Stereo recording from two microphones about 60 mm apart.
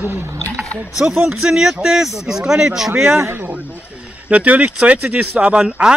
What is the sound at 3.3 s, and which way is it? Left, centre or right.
Speech, right.